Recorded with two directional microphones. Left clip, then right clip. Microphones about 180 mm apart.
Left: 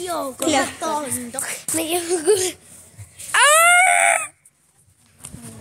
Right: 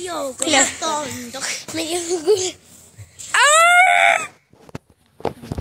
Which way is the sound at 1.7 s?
10° left (ahead or behind).